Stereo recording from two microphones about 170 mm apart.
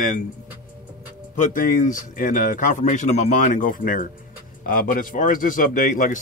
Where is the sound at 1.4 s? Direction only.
50° left (ahead or behind).